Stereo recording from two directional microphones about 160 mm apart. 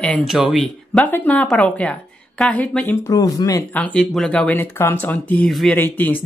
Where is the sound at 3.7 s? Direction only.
10° left (ahead or behind).